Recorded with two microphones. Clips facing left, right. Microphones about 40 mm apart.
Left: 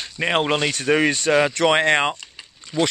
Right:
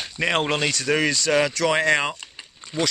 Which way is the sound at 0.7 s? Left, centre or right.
Left.